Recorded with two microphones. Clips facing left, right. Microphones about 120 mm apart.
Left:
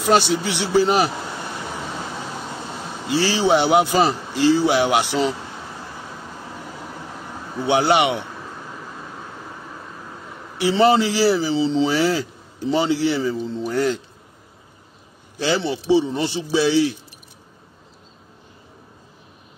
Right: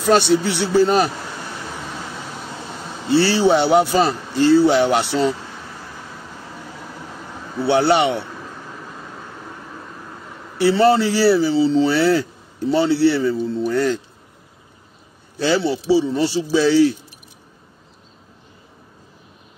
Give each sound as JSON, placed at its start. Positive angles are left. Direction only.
{"t": 0.0, "sound": "a man's voice", "side_deg": 15}
{"t": 3.1, "sound": "a man's voice", "side_deg": 15}
{"t": 7.6, "sound": "a man's voice", "side_deg": 15}
{"t": 10.6, "sound": "a man's voice", "side_deg": 15}
{"t": 15.3, "sound": "a man's voice", "side_deg": 20}